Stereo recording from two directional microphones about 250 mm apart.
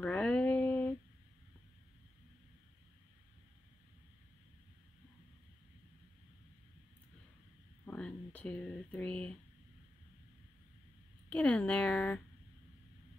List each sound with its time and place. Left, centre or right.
0.0 s a sound: centre
7.8 s speech: centre
11.2 s speech: centre